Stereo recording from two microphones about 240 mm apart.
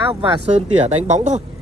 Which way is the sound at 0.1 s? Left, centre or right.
Right.